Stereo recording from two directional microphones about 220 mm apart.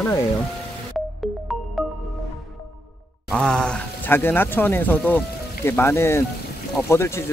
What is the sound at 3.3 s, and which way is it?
Speech, 5° left (ahead or behind).